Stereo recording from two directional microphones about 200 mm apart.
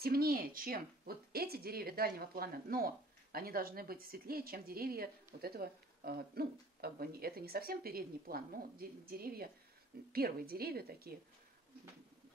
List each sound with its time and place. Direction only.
0.0 s speech: 50° right (ahead or behind)